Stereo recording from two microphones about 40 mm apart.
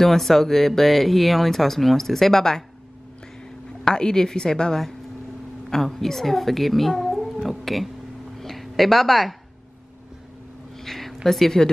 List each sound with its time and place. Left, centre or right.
0.0 s speech: centre
3.8 s speech: centre
5.7 s a woman's voice: centre
8.4 s a sound: centre
10.8 s a sound: centre
11.2 s speech: centre